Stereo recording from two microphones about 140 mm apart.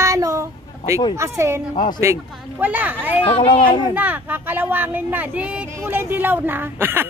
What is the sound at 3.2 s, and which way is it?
Speech, 40° left (ahead or behind).